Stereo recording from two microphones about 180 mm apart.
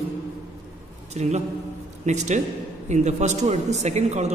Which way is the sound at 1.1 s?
40° right (ahead or behind).